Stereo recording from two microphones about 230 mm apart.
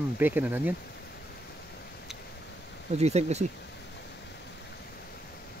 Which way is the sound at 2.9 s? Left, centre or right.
Right.